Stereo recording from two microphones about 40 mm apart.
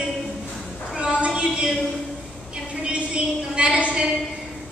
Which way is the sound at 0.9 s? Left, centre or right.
Right.